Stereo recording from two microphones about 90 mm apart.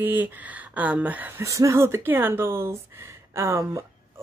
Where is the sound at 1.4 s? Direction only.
35° right (ahead or behind).